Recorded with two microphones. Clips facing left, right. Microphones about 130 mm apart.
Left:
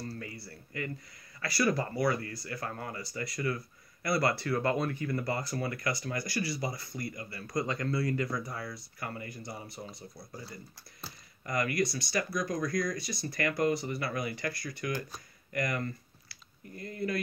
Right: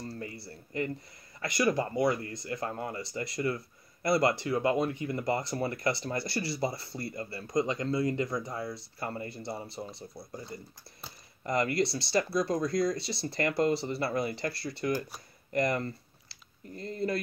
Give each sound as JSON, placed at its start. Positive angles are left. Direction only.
{"t": 0.1, "sound": "speech", "side_deg": -25}